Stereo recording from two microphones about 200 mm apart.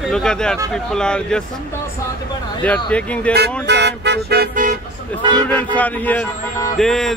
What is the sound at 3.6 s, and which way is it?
Speech, 60° right (ahead or behind).